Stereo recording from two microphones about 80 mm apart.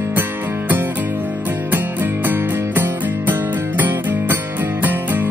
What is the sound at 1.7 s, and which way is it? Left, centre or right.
Music, right.